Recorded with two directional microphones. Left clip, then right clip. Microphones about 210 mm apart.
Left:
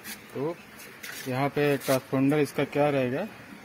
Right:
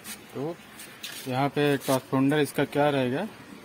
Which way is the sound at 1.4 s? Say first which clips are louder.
Right 1 dB; 5° right (ahead or behind).